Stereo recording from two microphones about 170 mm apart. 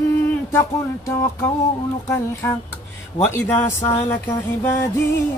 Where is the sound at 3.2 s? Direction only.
10° left (ahead or behind).